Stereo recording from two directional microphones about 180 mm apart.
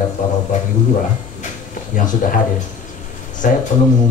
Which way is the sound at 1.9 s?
45° left (ahead or behind).